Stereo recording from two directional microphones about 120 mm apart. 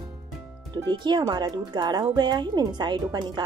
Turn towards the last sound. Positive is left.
turn(degrees=-40)  # may be behind; listen again after turning